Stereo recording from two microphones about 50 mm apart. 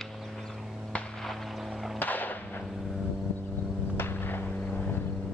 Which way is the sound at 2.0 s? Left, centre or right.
Left.